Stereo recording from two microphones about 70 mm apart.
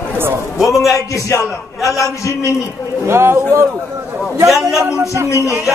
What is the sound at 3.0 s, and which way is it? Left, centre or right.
Speech, right.